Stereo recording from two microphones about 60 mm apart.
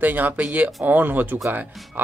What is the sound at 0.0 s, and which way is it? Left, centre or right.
A man's voice, right.